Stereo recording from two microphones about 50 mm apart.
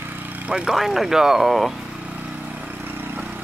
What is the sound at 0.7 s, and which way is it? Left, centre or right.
Speech, centre.